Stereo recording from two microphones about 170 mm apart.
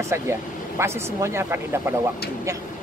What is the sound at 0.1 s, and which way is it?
Speech, 15° right (ahead or behind).